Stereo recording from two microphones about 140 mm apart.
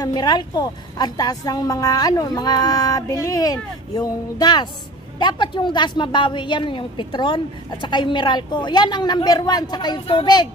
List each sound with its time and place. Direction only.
0.0 s a woman's voice: 30° left (ahead or behind)